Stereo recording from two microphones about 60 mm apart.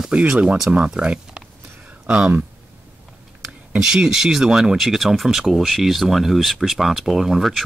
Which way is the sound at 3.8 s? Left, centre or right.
Centre.